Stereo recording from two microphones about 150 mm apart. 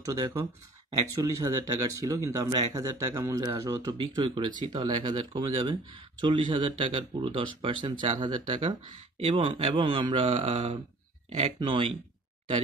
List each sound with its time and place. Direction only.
0.0 s speech: 25° right (ahead or behind)